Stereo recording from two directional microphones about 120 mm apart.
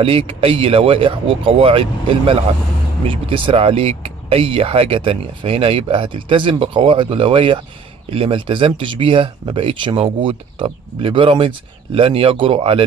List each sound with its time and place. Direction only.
0.0 s speech: 50° right (ahead or behind)